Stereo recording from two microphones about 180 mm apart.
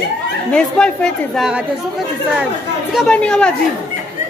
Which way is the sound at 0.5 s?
5° left (ahead or behind).